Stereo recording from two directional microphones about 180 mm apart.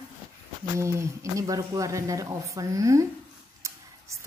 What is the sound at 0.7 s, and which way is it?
Mantra, 15° right (ahead or behind).